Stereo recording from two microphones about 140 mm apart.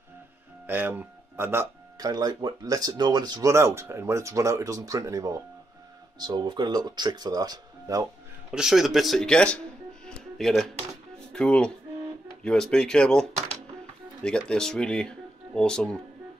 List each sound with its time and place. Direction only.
0.7 s speech: 15° right (ahead or behind)
8.5 s speech: 5° right (ahead or behind)
10.0 s music: 5° left (ahead or behind)
11.3 s speech: 5° left (ahead or behind)